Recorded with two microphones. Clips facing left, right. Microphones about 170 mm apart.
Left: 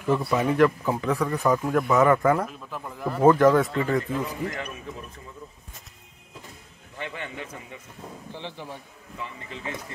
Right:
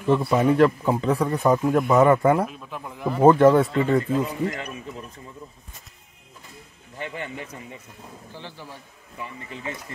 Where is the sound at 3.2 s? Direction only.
25° right (ahead or behind).